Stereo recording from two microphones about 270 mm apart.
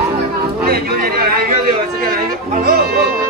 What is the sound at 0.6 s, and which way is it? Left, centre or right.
Speech, right.